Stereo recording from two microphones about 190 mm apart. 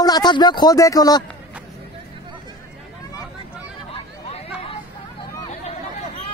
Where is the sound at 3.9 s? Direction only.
30° left (ahead or behind).